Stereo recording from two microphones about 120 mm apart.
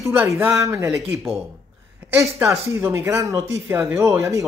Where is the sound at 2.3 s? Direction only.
25° right (ahead or behind).